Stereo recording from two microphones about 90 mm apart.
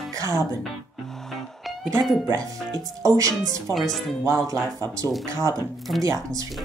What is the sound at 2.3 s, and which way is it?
Speech, 40° right (ahead or behind).